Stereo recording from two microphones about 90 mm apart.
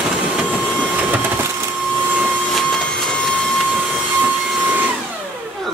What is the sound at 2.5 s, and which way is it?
Printer, centre (ahead or behind).